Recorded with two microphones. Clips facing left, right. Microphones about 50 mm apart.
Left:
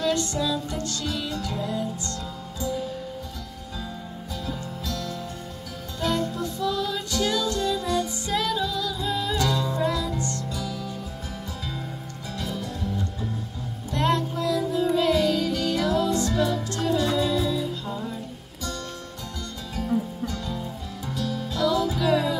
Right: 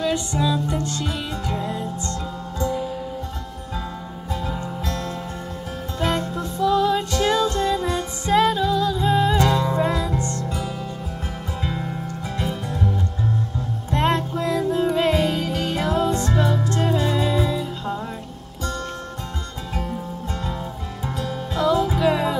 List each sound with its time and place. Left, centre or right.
0.0 s music: centre
4.3 s music: right
12.4 s music: right
19.7 s music: right